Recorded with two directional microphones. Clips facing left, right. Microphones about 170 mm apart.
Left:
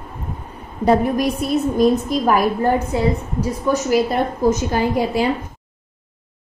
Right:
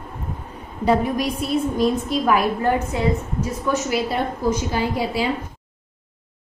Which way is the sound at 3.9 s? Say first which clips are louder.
Left 5 dB; 50° left (ahead or behind).